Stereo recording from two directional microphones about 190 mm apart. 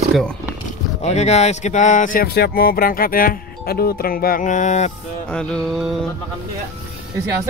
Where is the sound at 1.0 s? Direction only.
35° left (ahead or behind).